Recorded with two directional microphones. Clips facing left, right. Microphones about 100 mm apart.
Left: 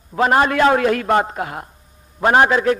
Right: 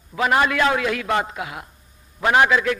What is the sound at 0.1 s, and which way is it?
A man's voice, 40° left (ahead or behind).